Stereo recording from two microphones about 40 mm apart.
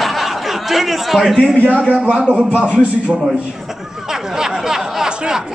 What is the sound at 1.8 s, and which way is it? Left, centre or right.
A man's voice, right.